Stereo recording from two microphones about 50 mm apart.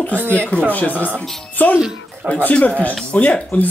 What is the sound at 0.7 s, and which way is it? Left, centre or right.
Speech, left.